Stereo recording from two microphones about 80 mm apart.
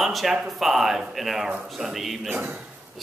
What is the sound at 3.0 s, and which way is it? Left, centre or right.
Speech, centre.